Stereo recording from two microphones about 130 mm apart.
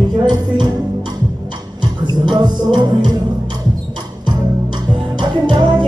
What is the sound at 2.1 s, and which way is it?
Music, 35° right (ahead or behind).